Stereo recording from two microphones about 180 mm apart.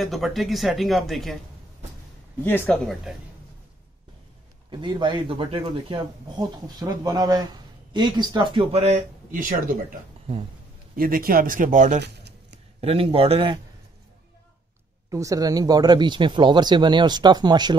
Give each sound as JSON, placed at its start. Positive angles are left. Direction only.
{"t": 0.0, "sound": "speech", "side_deg": 0}
{"t": 2.4, "sound": "speech", "side_deg": 10}
{"t": 4.6, "sound": "a man's voice", "side_deg": -25}
{"t": 11.0, "sound": "speech", "side_deg": -55}
{"t": 12.0, "sound": "a sound", "side_deg": -70}
{"t": 12.8, "sound": "a man's voice", "side_deg": -30}
{"t": 15.0, "sound": "a man's voice", "side_deg": -20}